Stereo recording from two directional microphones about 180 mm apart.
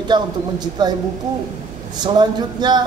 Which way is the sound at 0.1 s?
25° right (ahead or behind).